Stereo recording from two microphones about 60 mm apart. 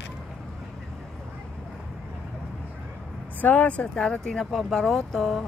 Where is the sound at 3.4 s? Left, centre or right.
Left.